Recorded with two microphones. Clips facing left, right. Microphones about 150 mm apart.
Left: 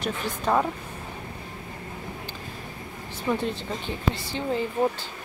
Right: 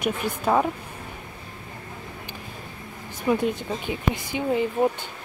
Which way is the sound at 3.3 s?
10° right (ahead or behind).